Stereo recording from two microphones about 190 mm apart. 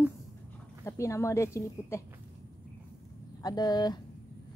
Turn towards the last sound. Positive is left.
turn(degrees=20)  # may be behind; listen again after turning